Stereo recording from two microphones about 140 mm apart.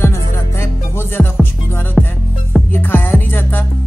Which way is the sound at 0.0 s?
15° left (ahead or behind).